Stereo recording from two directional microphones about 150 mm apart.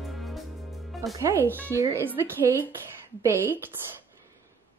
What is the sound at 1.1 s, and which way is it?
A woman's voice, 20° right (ahead or behind).